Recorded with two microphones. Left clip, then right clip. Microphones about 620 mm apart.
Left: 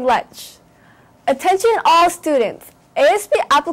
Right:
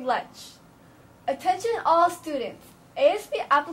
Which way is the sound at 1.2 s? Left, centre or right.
Left.